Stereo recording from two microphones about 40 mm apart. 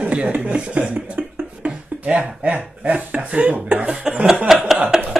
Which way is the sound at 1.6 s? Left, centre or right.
Right.